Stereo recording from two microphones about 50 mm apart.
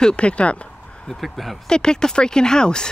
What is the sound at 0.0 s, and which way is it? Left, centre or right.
Speech, left.